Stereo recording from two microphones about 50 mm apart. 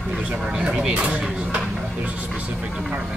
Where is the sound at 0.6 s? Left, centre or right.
Centre.